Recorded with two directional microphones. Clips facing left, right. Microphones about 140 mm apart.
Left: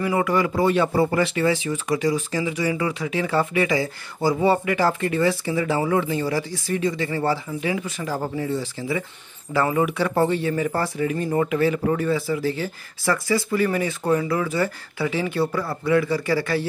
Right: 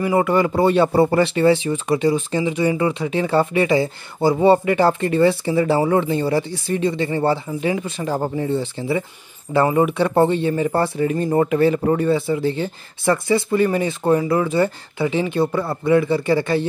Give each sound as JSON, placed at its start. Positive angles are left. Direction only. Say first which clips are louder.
{"t": 0.0, "sound": "speech", "louder": "right 4 dB", "side_deg": -30}